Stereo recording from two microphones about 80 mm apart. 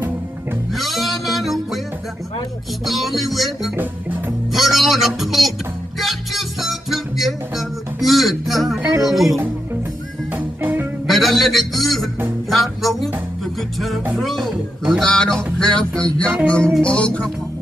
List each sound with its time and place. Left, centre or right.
0.7 s music: centre
2.8 s music: centre
3.7 s music: right
4.5 s music: centre
9.0 s speech: centre
10.3 s music: right
11.1 s a sound: centre
12.4 s music: centre